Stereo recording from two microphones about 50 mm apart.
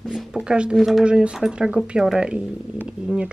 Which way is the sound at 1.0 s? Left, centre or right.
Centre.